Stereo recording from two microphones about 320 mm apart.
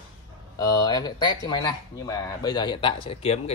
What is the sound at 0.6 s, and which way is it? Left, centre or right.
Speech, centre.